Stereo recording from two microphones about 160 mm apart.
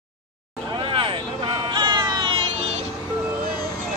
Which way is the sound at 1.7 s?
30° right (ahead or behind).